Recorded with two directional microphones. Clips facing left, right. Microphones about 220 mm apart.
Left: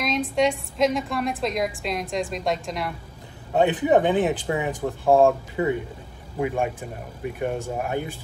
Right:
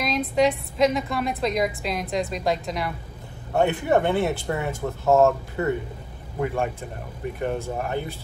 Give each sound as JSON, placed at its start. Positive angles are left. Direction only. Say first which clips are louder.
{"t": 0.0, "sound": "a woman's voice", "louder": "right 1 dB", "side_deg": 0}
{"t": 3.5, "sound": "speech", "louder": "left 2 dB", "side_deg": 15}